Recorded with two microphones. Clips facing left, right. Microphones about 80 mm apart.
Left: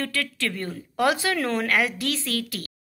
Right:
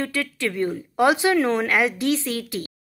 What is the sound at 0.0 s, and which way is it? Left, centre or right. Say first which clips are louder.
Speech: right 3 dB; centre.